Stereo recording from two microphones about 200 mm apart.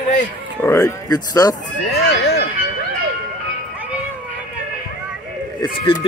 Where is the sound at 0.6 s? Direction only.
10° left (ahead or behind).